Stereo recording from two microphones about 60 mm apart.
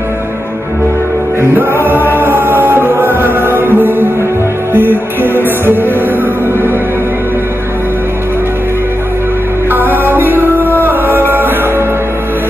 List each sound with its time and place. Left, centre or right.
1.5 s music: right
9.7 s music: right